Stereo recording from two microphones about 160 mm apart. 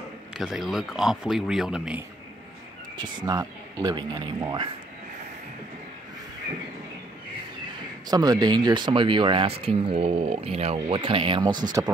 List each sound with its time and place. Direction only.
0.3 s speech: centre (ahead or behind)
3.0 s speech: 25° right (ahead or behind)
8.1 s speech: 25° right (ahead or behind)